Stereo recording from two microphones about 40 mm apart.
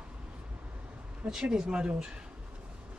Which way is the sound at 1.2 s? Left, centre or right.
Right.